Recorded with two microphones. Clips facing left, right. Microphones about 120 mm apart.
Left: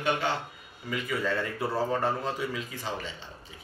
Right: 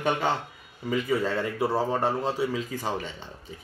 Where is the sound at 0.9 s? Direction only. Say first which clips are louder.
Right 5 dB; 35° right (ahead or behind).